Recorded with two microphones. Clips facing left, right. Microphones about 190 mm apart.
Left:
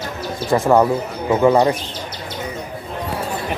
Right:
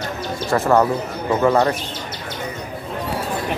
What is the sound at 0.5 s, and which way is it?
Speech, 10° left (ahead or behind).